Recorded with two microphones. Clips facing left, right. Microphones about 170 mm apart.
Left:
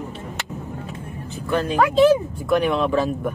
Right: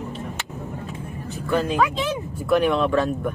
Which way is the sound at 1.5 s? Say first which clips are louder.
Left 1 dB; 5° right (ahead or behind).